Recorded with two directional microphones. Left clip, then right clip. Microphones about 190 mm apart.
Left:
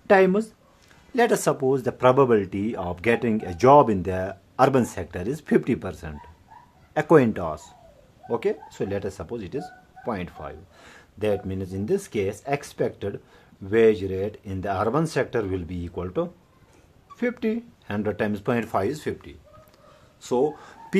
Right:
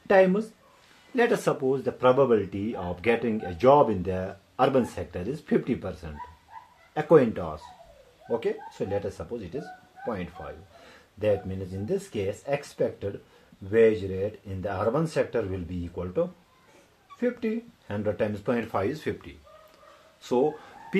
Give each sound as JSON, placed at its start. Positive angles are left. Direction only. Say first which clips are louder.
{"t": 0.0, "sound": "speech", "louder": "left 2 dB", "side_deg": 35}